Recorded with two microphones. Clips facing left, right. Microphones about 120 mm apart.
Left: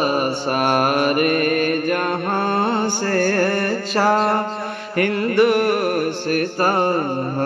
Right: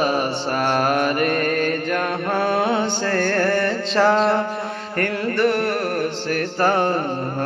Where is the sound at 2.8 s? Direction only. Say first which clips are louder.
Left 2 dB; 65° right (ahead or behind).